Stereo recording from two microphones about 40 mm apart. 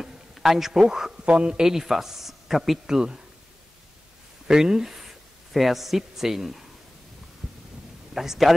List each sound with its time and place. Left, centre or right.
0.0 s a sound: centre
1.1 s a man's voice: right
4.5 s speech: centre
8.1 s speech: centre